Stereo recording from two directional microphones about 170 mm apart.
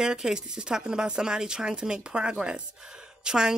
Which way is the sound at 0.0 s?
5° right (ahead or behind).